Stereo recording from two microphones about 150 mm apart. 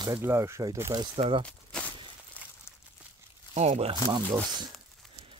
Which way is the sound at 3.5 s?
45° right (ahead or behind).